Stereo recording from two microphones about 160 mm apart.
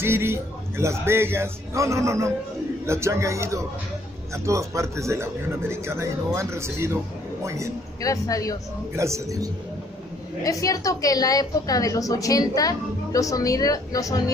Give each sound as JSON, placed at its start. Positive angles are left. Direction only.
{"t": 0.0, "sound": "a man's voice", "side_deg": -15}
{"t": 8.0, "sound": "a woman's voice", "side_deg": 20}
{"t": 8.9, "sound": "a man's voice", "side_deg": -20}
{"t": 10.4, "sound": "a woman's voice", "side_deg": 20}